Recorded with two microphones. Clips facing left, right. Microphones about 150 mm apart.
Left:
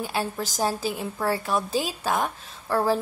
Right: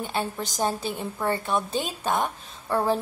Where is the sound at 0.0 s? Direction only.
5° left (ahead or behind).